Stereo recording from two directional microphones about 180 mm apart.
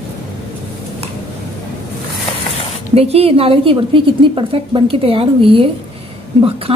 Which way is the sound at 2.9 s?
35° right (ahead or behind).